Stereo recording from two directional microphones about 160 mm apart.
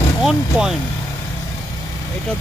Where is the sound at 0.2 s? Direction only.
5° right (ahead or behind).